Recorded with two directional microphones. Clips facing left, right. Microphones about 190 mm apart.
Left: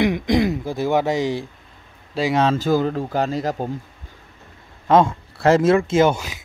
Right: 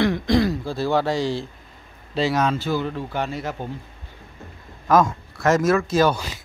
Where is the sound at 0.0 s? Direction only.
20° left (ahead or behind).